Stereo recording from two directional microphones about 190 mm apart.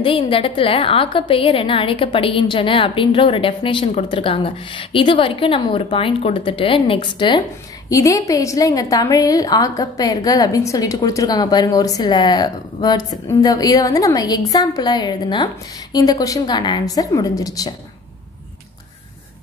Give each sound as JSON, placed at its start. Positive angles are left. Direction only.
{"t": 0.0, "sound": "a woman's voice", "side_deg": 30}